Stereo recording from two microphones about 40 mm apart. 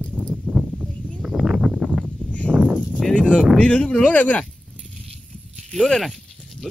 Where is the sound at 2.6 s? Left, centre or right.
Right.